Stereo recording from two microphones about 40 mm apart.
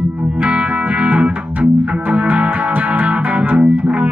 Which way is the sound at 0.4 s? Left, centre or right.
Right.